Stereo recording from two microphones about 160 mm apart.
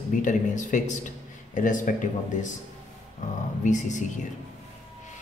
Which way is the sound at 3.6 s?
50° left (ahead or behind).